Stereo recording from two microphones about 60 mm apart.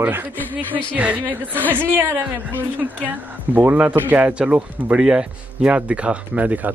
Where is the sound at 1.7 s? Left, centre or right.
Right.